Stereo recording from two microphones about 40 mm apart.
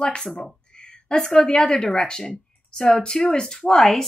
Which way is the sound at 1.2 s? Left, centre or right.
Centre.